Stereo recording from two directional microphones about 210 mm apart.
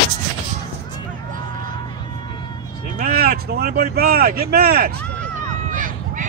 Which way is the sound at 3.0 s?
45° right (ahead or behind).